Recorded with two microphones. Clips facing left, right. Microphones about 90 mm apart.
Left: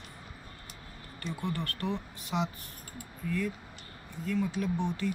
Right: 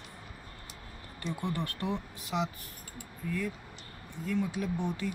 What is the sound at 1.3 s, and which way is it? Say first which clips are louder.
Speech: left 1 dB; 20° right (ahead or behind).